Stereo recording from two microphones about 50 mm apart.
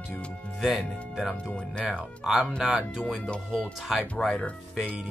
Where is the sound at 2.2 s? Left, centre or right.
Centre.